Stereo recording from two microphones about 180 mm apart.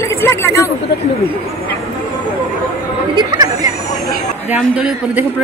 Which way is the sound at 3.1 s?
20° right (ahead or behind).